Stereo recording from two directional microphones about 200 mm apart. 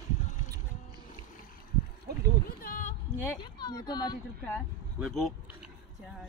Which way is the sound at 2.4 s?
45° left (ahead or behind).